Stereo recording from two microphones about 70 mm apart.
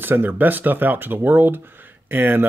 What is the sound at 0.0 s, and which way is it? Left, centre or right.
Speech, right.